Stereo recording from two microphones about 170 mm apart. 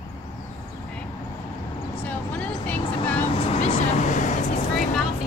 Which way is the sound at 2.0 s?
10° left (ahead or behind).